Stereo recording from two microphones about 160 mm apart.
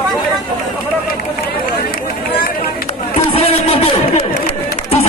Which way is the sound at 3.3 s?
35° left (ahead or behind).